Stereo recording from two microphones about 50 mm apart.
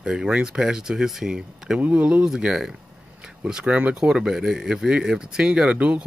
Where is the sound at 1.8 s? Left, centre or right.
Right.